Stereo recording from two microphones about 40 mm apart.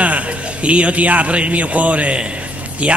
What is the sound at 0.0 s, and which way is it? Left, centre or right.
A man's voice, right.